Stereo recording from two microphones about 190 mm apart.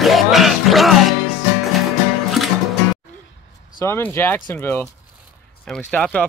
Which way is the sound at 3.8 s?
15° left (ahead or behind).